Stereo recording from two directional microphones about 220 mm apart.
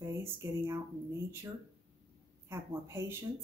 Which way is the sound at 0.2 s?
15° right (ahead or behind).